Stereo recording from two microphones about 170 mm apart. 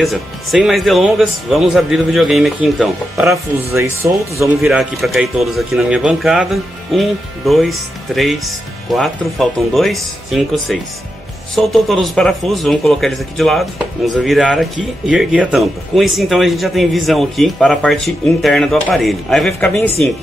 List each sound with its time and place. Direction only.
0.0 s speech: centre (ahead or behind)
3.3 s speech: 15° right (ahead or behind)
4.6 s speech: centre (ahead or behind)